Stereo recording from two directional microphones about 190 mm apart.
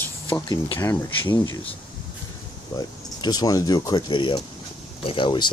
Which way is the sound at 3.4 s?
20° left (ahead or behind).